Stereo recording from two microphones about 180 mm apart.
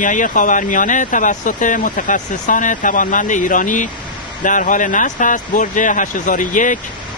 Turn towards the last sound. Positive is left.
turn(degrees=45)  # may be behind; listen again after turning